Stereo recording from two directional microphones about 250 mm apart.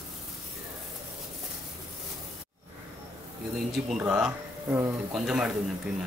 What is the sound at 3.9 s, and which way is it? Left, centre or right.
Speech, centre.